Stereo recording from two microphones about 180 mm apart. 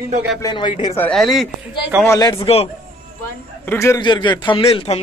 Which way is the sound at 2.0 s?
20° left (ahead or behind).